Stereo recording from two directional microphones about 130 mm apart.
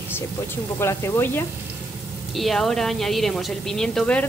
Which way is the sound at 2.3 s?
Centre (ahead or behind).